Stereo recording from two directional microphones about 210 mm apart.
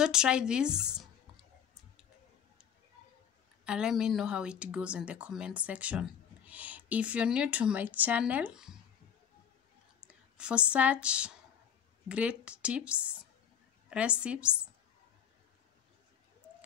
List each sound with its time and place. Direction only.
0.0 s speech: 5° right (ahead or behind)
3.6 s speech: 5° right (ahead or behind)
10.0 s speech: 5° right (ahead or behind)